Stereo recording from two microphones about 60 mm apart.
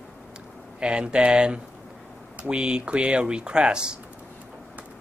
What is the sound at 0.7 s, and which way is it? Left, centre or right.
Speech, centre.